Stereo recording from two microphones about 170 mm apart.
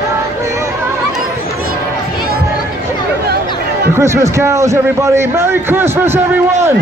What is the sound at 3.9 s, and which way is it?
A man's voice, 15° right (ahead or behind).